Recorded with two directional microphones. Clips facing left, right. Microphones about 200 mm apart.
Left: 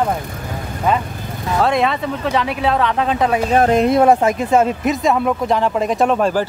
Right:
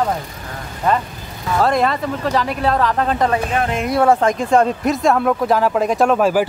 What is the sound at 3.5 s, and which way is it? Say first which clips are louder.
Speech: left 7 dB; 40° left (ahead or behind).